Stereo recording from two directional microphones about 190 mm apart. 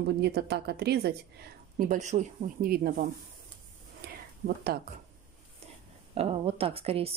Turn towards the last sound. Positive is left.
turn(degrees=-30)  # may be behind; listen again after turning